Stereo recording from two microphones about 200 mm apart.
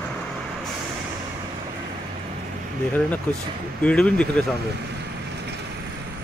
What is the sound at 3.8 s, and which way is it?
Speech, 5° left (ahead or behind).